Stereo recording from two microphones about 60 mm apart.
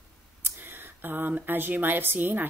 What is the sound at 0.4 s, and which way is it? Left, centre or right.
Speech, right.